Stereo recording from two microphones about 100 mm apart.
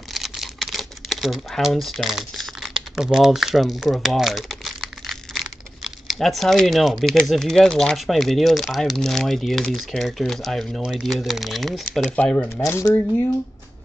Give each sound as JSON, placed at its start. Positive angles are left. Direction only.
{"t": 0.1, "sound": "speech", "side_deg": 0}
{"t": 12.2, "sound": "speech", "side_deg": 15}
{"t": 12.4, "sound": "speech", "side_deg": 25}